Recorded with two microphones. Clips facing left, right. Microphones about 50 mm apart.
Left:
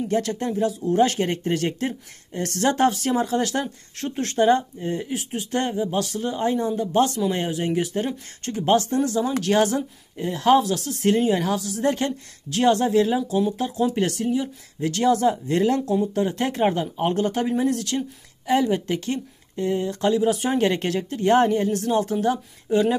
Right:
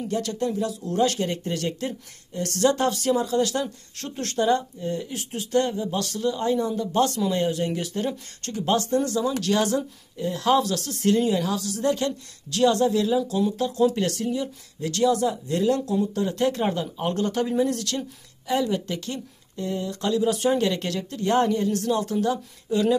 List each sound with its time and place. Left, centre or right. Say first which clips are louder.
0.1 s speech: left 1 dB; left
4.4 s speech: left 3 dB; left
5.1 s speech: right 2 dB; centre
8.5 s speech: left 3 dB; left
10.6 s speech: left 2 dB; centre
11.0 s speech: left 1 dB; left
13.2 s speech: left 1 dB; centre
15.0 s speech: left 3 dB; left
15.7 s speech: left 2 dB; left
17.6 s speech: left 1 dB; centre
18.5 s speech: left 4 dB; left
20.6 s speech: left 3 dB; left
22.0 s speech: left 2 dB; left